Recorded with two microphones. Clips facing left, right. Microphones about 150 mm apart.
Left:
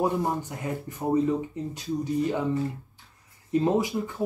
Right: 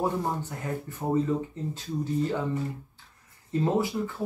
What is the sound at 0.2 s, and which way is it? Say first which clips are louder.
Speech: left 3 dB; 15° left (ahead or behind).